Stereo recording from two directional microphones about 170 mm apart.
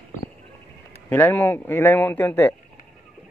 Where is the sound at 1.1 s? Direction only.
10° left (ahead or behind).